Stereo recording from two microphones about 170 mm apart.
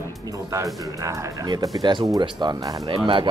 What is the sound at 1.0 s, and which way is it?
Speech, 20° right (ahead or behind).